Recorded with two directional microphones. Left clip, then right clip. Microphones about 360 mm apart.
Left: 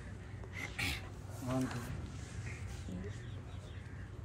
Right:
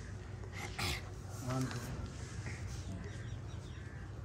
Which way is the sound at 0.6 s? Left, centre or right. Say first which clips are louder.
Left 1 dB; centre.